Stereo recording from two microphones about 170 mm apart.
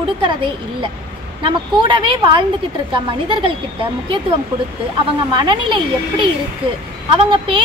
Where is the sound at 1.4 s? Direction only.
30° right (ahead or behind).